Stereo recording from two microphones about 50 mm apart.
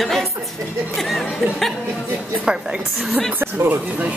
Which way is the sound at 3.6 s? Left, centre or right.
Right.